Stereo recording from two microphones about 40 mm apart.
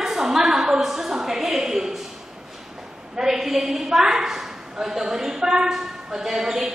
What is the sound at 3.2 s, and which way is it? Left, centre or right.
A woman's voice, centre.